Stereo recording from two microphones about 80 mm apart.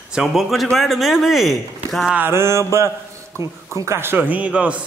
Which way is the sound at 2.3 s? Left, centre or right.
Right.